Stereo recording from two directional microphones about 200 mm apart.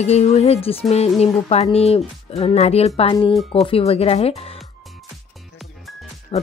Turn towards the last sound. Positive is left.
turn(degrees=30)  # may be behind; listen again after turning